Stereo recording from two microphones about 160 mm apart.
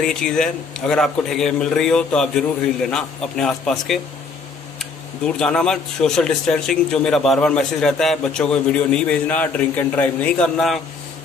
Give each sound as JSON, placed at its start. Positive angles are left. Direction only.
{"t": 0.0, "sound": "speech", "side_deg": 5}